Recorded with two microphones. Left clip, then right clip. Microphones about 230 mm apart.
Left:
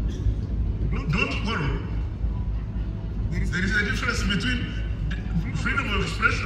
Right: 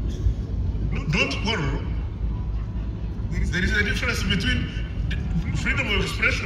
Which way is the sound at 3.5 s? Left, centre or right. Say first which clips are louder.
Right 1 dB; right.